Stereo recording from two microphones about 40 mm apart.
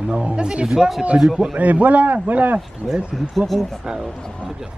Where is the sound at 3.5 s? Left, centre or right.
Centre.